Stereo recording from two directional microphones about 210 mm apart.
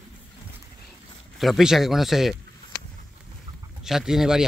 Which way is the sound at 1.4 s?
Centre (ahead or behind).